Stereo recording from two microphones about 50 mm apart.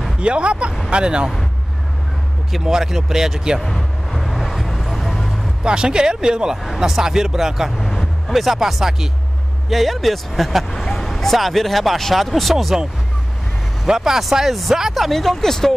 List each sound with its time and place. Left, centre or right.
0.2 s speech: right
2.5 s speech: centre
3.6 s vehicle: centre
5.6 s speech: centre
10.7 s speech: centre
13.8 s speech: centre